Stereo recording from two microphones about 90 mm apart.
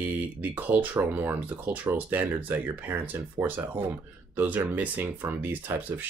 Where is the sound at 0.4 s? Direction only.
20° right (ahead or behind).